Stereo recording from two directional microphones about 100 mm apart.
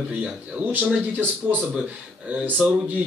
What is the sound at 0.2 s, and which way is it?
Speech, 10° right (ahead or behind).